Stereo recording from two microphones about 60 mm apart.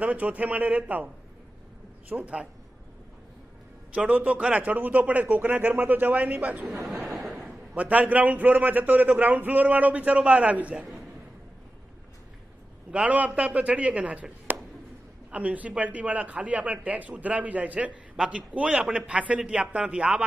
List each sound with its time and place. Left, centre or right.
0.0 s a man's voice: right
3.9 s a man's voice: right
6.7 s speech: centre
7.1 s a sound: centre
7.3 s a man's voice: right
12.9 s a man's voice: right
14.5 s a sound: right
15.3 s a man's voice: right